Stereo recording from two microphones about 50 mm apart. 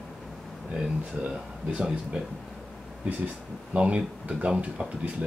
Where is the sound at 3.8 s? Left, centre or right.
Right.